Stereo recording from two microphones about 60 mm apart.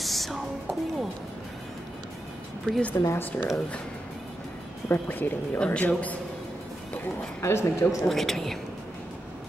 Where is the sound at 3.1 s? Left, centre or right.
Left.